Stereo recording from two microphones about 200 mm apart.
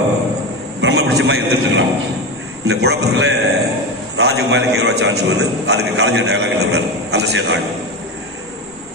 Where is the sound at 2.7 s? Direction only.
55° right (ahead or behind).